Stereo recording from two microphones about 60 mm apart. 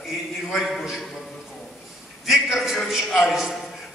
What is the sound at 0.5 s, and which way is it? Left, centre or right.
Speech, centre.